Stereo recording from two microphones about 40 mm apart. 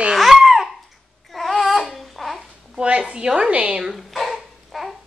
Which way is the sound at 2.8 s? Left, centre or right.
Right.